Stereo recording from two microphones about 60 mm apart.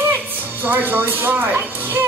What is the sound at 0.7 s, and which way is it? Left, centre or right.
Speech, right.